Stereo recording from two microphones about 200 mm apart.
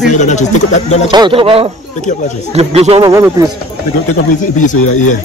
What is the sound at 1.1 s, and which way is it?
Speech, 25° right (ahead or behind).